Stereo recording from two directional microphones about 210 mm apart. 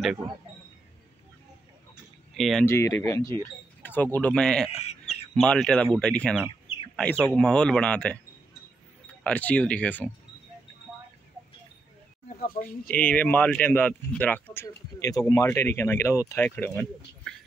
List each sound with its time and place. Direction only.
2.3 s speech: centre (ahead or behind)
2.6 s speech: 15° left (ahead or behind)
4.6 s bird: 30° left (ahead or behind)
5.3 s speech: centre (ahead or behind)
9.2 s speech: 5° left (ahead or behind)
12.4 s speech: 45° left (ahead or behind)
12.9 s speech: 10° left (ahead or behind)